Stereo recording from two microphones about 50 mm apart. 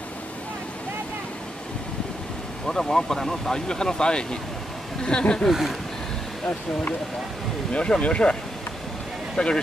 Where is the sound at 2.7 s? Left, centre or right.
Centre.